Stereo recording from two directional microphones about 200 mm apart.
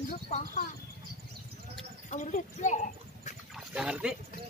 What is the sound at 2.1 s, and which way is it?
Speech, 40° left (ahead or behind).